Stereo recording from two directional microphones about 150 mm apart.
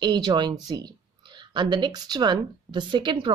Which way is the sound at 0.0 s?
30° right (ahead or behind).